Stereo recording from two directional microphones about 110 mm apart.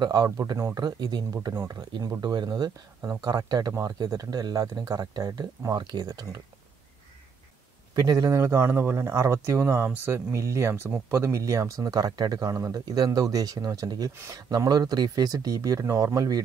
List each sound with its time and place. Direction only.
0.0 s speech: 35° right (ahead or behind)
7.9 s a man's voice: 35° right (ahead or behind)
8.3 s speech: 25° right (ahead or behind)
14.1 s speech: 25° right (ahead or behind)
14.5 s speech: 35° right (ahead or behind)